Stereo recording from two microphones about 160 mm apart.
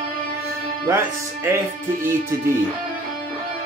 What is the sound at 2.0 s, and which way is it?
Speech, 15° right (ahead or behind).